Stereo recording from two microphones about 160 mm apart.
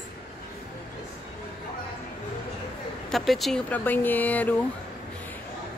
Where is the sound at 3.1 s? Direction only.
Centre (ahead or behind).